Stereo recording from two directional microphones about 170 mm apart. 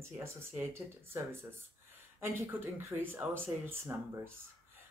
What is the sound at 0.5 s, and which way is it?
Speech, 15° right (ahead or behind).